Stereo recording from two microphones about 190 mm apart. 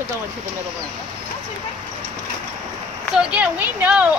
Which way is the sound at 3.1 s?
5° right (ahead or behind).